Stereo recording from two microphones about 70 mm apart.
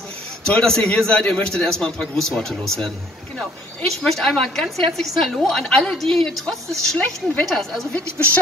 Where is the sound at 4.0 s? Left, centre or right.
Centre.